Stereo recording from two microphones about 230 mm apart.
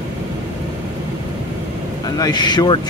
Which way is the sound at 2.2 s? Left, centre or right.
Centre.